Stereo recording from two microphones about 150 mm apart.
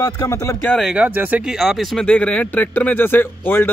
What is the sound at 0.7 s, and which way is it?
Speech, centre (ahead or behind).